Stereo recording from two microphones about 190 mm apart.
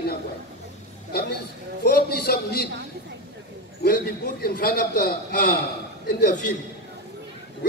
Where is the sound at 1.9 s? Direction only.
55° left (ahead or behind).